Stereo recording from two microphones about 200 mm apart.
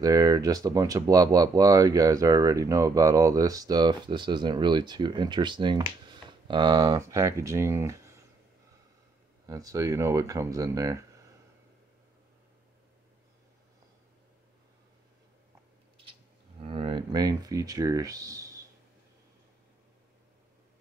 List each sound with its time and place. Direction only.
0.0 s speech: 20° right (ahead or behind)
9.5 s speech: 15° right (ahead or behind)
16.5 s speech: 25° right (ahead or behind)